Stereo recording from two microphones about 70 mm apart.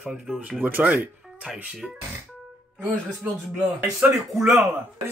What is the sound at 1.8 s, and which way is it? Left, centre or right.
Speech, centre.